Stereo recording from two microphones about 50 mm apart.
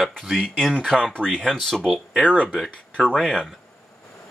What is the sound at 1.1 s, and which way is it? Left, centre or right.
Speech, centre.